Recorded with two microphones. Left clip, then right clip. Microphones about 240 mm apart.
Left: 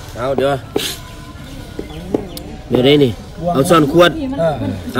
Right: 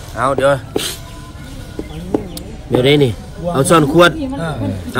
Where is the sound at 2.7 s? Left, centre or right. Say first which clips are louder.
Left 1 dB; centre.